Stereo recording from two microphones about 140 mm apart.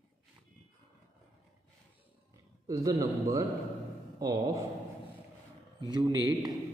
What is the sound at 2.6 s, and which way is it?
A man's voice, 25° right (ahead or behind).